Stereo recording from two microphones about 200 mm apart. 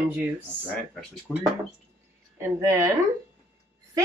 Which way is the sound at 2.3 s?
15° right (ahead or behind).